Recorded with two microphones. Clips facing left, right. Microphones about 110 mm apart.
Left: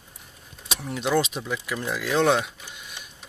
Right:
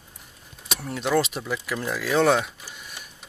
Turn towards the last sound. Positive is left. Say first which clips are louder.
# even
turn(degrees=-5)  # may be behind; listen again after turning